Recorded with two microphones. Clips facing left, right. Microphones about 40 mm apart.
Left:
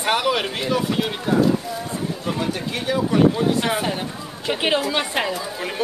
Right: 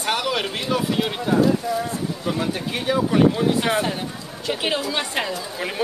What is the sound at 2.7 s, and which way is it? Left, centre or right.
Speech, centre.